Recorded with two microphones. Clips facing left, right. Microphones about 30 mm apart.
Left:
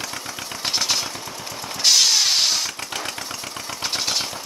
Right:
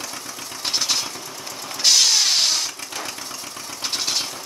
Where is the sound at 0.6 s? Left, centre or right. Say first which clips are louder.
Even; centre.